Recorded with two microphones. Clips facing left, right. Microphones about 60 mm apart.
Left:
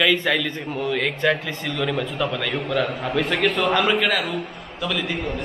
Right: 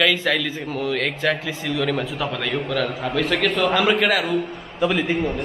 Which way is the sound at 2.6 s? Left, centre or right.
Centre.